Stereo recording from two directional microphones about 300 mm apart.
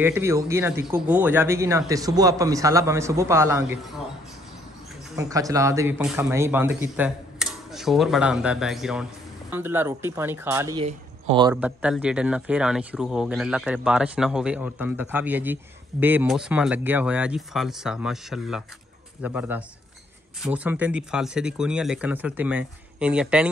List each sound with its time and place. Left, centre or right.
0.0 s speech: centre
5.1 s speech: centre
10.8 s speech: centre